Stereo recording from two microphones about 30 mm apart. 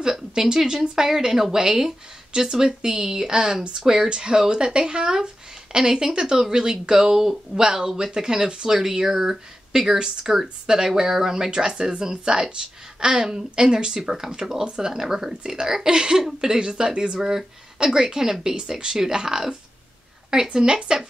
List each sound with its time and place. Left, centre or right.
0.0 s a sound: centre
0.9 s a woman's voice: centre
8.7 s a woman's voice: centre
11.5 s speech: right
16.9 s speech: right
17.7 s speech: right
18.6 s a woman's voice: right
20.5 s speech: right